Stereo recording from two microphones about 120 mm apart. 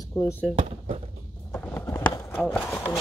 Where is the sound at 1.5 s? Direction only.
15° left (ahead or behind).